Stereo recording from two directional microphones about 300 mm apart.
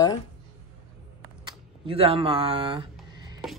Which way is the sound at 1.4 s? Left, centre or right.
Centre.